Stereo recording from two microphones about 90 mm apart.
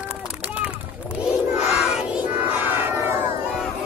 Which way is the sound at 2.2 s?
20° right (ahead or behind).